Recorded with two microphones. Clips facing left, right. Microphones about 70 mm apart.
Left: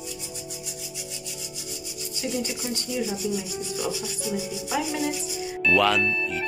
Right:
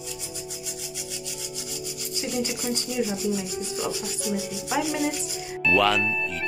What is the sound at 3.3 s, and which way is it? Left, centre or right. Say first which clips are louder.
Rub: right 1 dB; right.